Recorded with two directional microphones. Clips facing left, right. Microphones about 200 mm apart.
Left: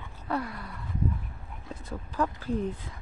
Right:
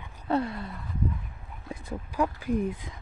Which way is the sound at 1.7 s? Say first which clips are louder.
Right 3 dB; 10° right (ahead or behind).